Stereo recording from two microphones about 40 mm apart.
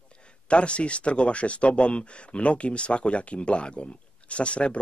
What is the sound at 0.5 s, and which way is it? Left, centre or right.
Speech, left.